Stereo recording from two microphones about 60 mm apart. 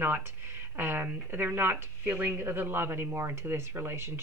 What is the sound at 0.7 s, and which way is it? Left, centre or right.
Speech, right.